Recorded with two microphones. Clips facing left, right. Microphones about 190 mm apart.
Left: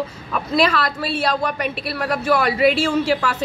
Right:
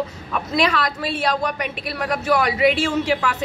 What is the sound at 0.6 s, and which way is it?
A woman's voice, 15° right (ahead or behind).